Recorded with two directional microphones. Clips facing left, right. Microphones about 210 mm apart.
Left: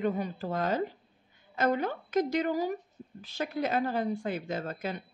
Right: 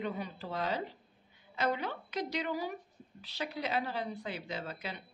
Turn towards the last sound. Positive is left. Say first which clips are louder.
# left 6 dB
turn(degrees=45)  # may be behind; listen again after turning